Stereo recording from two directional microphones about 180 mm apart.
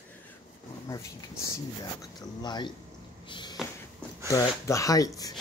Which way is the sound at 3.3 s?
25° left (ahead or behind).